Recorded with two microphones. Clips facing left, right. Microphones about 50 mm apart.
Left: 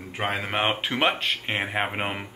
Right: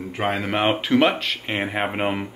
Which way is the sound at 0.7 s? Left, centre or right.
Centre.